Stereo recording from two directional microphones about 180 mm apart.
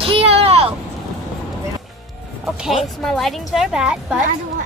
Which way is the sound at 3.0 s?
Centre (ahead or behind).